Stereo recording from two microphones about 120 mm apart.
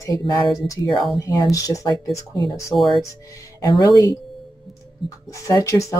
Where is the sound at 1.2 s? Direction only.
30° left (ahead or behind).